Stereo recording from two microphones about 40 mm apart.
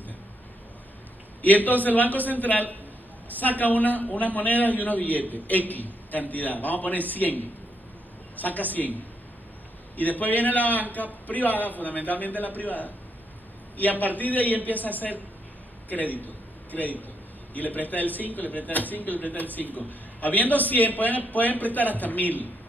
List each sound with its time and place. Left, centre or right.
1.4 s a man's voice: left
9.9 s a man's voice: left